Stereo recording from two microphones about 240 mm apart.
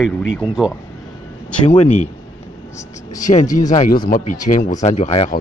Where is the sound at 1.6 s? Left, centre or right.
Left.